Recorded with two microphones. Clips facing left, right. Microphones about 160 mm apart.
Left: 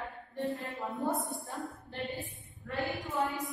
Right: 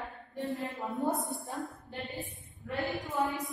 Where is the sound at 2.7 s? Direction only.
Centre (ahead or behind).